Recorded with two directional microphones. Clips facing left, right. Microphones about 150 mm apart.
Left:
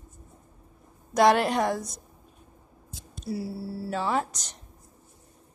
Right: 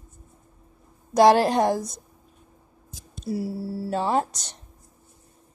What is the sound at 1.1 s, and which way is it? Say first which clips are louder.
Speech: right 4 dB; 30° right (ahead or behind).